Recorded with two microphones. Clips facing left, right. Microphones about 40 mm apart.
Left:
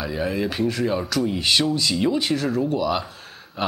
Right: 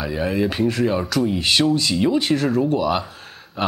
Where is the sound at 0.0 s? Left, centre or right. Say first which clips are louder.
Right 3 dB; centre.